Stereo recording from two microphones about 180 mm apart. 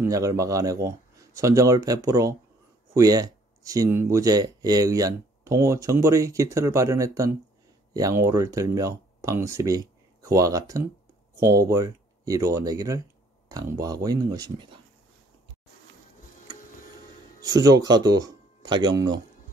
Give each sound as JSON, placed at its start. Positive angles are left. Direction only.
{"t": 0.0, "sound": "speech", "side_deg": -20}
{"t": 17.4, "sound": "speech", "side_deg": -20}